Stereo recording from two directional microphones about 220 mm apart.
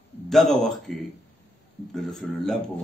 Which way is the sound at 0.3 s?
Centre (ahead or behind).